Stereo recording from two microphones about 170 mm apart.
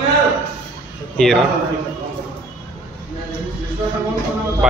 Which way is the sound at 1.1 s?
Centre (ahead or behind).